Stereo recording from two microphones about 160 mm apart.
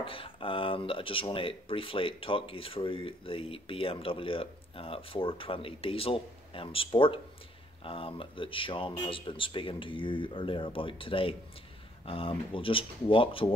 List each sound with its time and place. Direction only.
0.0 s speech: 35° left (ahead or behind)